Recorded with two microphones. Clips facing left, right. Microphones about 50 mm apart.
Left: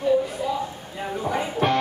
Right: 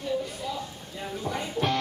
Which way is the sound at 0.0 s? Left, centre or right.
Centre.